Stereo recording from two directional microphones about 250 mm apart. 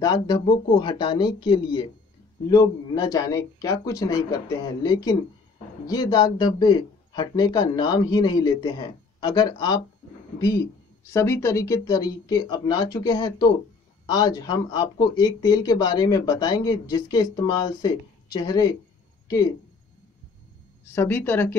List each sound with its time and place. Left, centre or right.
0.0 s speech: centre
11.1 s speech: centre
20.9 s speech: centre